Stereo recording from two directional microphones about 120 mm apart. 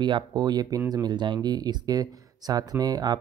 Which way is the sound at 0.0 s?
35° right (ahead or behind).